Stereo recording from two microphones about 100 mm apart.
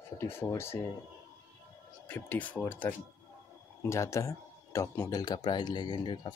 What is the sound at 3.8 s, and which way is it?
Speech, 30° left (ahead or behind).